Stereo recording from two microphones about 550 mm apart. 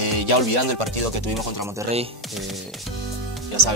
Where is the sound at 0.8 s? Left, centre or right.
Right.